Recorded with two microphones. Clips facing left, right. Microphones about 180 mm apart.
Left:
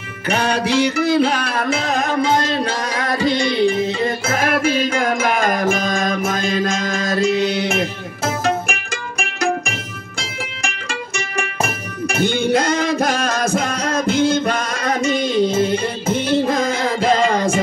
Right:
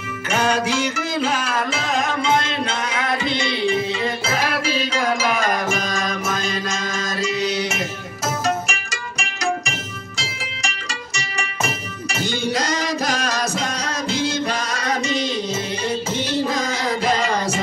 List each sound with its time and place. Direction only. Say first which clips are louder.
0.3 s music: left 2 dB; 35° left (ahead or behind)
2.9 s music: left 4 dB; 40° left (ahead or behind)